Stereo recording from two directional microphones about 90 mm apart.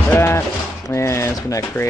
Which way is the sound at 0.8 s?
30° left (ahead or behind).